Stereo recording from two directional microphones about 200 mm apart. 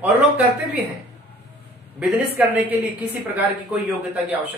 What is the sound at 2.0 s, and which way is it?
Speech, 10° right (ahead or behind).